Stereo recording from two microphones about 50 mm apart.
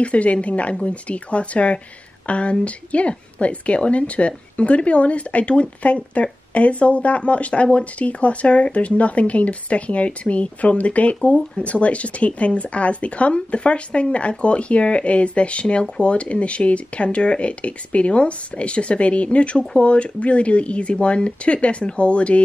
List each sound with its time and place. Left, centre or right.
0.0 s a woman's voice: left